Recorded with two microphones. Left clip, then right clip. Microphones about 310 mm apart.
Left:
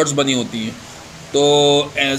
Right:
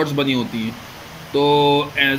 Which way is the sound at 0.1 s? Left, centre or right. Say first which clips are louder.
Left 2 dB; left.